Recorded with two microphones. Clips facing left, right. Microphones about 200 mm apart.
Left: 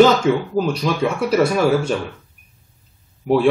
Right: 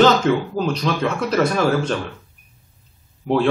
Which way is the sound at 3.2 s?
5° left (ahead or behind).